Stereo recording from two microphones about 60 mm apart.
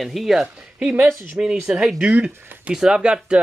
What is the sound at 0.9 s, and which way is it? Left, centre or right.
Speech, right.